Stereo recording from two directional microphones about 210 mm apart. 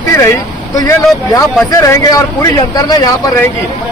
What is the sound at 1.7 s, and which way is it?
Speech, 15° left (ahead or behind).